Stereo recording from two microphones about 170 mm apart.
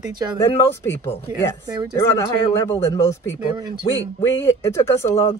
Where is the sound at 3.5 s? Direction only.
25° right (ahead or behind).